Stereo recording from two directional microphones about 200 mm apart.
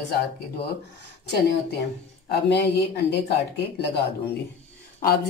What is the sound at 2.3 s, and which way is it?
Speech, 55° left (ahead or behind).